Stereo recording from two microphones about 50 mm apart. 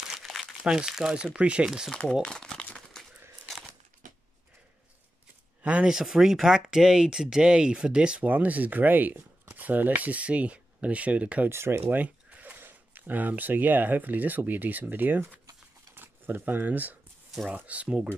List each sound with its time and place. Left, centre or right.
0.7 s speech: centre
1.1 s speech: right
1.9 s speech: centre
2.2 s crumpling: centre
5.6 s speech: right
5.9 s speech: centre
8.2 s speech: right
11.5 s speech: right
11.9 s a sound: right
12.5 s speech: right